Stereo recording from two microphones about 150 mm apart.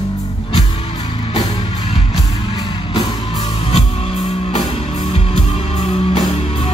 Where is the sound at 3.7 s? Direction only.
50° left (ahead or behind).